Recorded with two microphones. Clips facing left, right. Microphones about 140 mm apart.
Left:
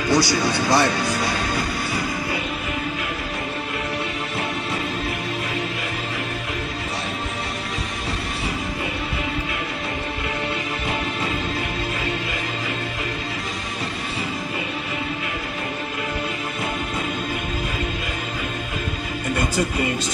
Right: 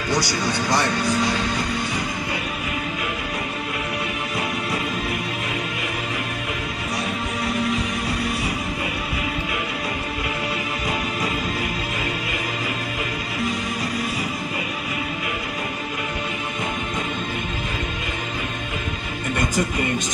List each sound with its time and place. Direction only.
0.1 s speech: 15° right (ahead or behind)